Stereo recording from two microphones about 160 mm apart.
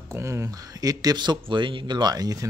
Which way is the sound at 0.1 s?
20° right (ahead or behind).